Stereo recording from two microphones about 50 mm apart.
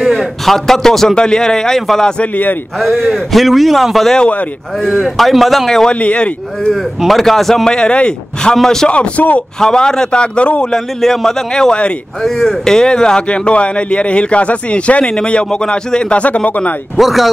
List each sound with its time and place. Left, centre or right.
0.0 s a man's voice: centre
3.0 s speech: centre
5.7 s a man's voice: centre
5.9 s speech: left
7.0 s speech: centre; by 9.4 s left
9.6 s a man's voice: centre
10.7 s a man's voice: centre; by 16.7 s left
16.9 s speech: centre